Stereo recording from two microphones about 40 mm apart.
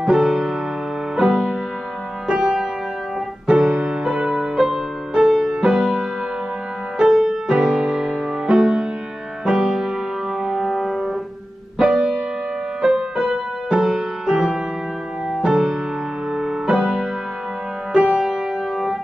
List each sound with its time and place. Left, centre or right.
0.0 s music: centre
4.6 s music: centre
7.1 s music: centre
18.2 s music: centre